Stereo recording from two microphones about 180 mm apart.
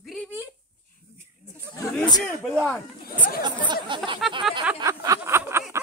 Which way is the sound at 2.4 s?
Centre (ahead or behind).